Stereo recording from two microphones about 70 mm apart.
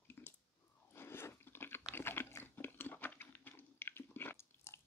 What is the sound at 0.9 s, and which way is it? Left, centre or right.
Crunch, left.